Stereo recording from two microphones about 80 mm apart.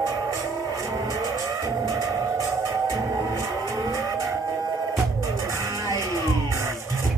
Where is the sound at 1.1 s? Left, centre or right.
Right.